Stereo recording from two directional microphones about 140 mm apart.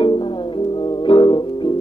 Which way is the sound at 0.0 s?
35° left (ahead or behind).